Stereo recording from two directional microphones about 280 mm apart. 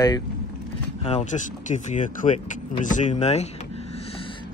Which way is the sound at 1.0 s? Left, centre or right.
Left.